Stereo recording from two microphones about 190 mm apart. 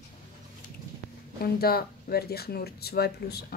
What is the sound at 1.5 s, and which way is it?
Speech, 55° left (ahead or behind).